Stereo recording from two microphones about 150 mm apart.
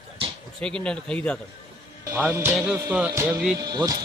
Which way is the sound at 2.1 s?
15° right (ahead or behind).